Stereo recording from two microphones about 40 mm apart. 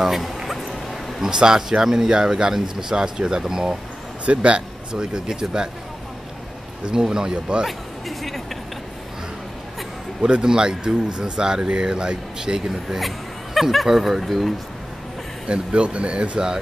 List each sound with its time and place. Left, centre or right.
0.0 s speech: centre
1.2 s speech: centre
4.3 s speech: right
6.9 s speech: centre
10.2 s speech: centre
14.2 s speech: centre
15.4 s speech: right